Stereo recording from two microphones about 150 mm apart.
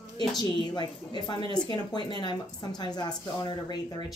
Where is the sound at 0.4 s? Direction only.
30° left (ahead or behind).